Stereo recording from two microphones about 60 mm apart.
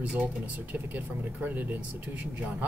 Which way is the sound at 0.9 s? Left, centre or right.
Right.